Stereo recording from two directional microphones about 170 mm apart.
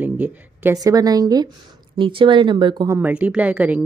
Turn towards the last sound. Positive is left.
turn(degrees=-10)  # may be behind; listen again after turning